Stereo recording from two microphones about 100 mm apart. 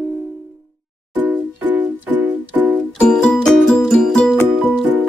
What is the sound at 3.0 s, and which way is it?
Music, 10° left (ahead or behind).